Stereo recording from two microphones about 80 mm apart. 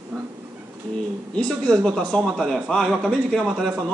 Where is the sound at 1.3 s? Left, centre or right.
Centre.